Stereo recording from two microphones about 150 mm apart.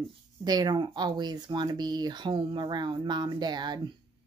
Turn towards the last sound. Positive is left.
turn(degrees=-30)  # may be behind; listen again after turning